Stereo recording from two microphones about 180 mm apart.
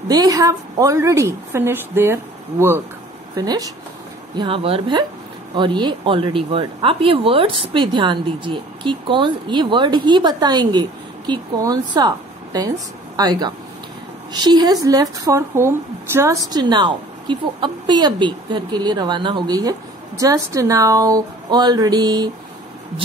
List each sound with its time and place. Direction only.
0.1 s a woman's voice: 20° right (ahead or behind)
3.3 s a woman's voice: 20° right (ahead or behind)